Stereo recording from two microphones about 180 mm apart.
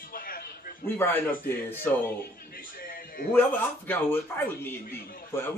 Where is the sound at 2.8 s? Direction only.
55° left (ahead or behind).